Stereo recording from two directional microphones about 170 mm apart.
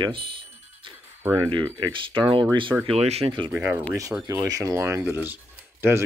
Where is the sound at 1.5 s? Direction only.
30° right (ahead or behind).